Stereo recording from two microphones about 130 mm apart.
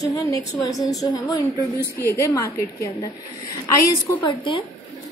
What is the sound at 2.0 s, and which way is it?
Speech, 20° left (ahead or behind).